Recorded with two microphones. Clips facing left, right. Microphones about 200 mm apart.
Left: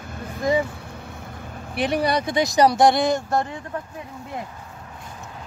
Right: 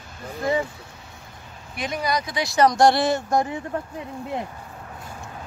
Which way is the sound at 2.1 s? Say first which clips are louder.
Left 4 dB; 30° left (ahead or behind).